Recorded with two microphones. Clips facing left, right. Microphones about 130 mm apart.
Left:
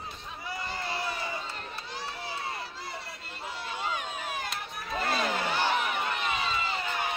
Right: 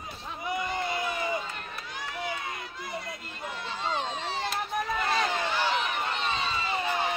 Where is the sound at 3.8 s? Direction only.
30° right (ahead or behind).